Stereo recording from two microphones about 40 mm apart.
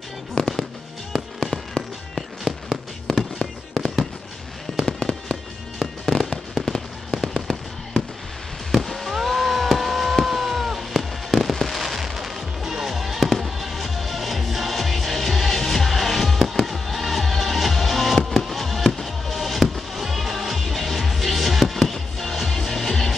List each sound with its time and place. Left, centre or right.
0.3 s fireworks: centre
8.7 s a sound: centre
11.5 s fireworks: centre